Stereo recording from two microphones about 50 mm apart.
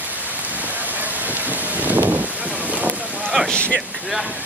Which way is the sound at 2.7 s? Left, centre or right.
Right.